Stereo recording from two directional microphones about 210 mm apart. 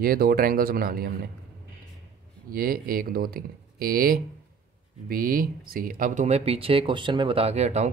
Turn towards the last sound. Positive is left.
turn(degrees=-30)  # may be behind; listen again after turning